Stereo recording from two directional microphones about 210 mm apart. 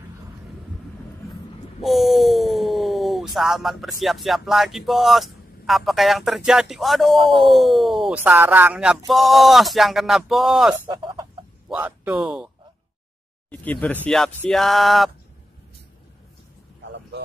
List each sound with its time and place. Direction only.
1.8 s a sound: centre (ahead or behind)
4.0 s speech: centre (ahead or behind)
10.9 s speech: 20° right (ahead or behind)
11.7 s speech: 5° right (ahead or behind)
13.5 s speech: 5° left (ahead or behind)